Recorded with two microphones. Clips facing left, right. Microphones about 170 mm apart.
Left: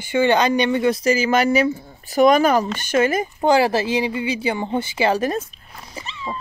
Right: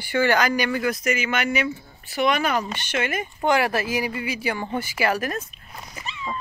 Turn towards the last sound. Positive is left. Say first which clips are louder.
# left 2 dB
turn(degrees=30)  # may be behind; listen again after turning